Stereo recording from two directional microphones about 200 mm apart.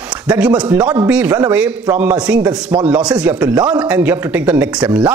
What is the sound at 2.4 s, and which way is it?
Speech, 20° right (ahead or behind).